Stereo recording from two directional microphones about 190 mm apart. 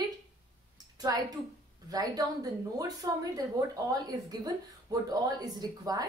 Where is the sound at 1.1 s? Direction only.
20° right (ahead or behind).